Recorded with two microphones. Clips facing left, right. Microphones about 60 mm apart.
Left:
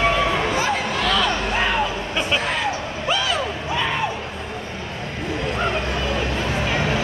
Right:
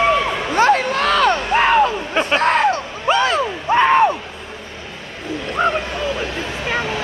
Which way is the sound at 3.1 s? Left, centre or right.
Right.